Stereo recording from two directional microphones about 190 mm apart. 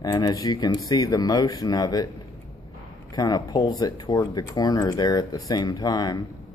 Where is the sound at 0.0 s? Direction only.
15° left (ahead or behind).